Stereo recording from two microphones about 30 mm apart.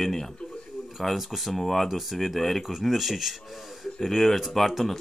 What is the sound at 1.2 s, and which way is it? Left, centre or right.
Speech, centre.